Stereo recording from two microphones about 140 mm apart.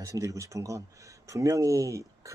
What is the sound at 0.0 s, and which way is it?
Speech, 25° right (ahead or behind).